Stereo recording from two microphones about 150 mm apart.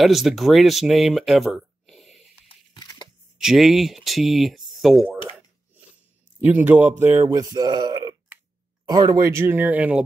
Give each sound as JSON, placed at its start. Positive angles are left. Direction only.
{"t": 0.0, "sound": "speech", "side_deg": 0}
{"t": 2.4, "sound": "a sound", "side_deg": 30}
{"t": 3.3, "sound": "speech", "side_deg": 0}
{"t": 6.4, "sound": "speech", "side_deg": -10}